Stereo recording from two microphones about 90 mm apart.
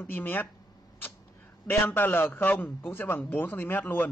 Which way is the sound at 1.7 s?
20° left (ahead or behind).